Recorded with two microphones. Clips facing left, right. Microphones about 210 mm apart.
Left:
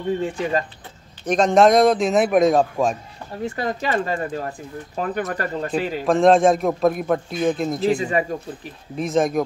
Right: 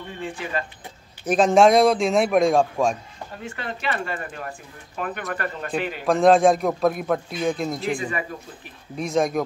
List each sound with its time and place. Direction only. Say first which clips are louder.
0.2 s speech: left 6 dB; 40° left (ahead or behind)
1.2 s a man's voice: left 1 dB; 5° right (ahead or behind)
3.4 s speech: left 6 dB; 40° left (ahead or behind)
5.7 s a man's voice: left 2 dB; centre (ahead or behind)
8.9 s a man's voice: left 2 dB; centre (ahead or behind)